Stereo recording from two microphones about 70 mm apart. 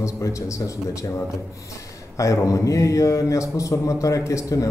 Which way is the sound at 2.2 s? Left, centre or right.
Left.